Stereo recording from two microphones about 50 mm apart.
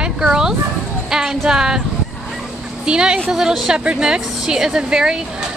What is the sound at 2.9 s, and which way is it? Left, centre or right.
Speech, centre.